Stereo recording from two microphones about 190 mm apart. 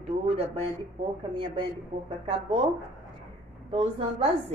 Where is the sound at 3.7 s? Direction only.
30° right (ahead or behind).